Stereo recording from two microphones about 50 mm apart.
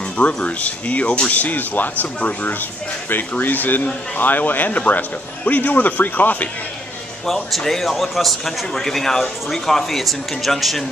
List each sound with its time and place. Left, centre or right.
0.2 s speech: left
7.5 s speech: centre